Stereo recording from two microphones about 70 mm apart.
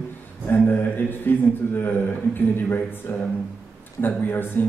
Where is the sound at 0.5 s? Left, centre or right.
Left.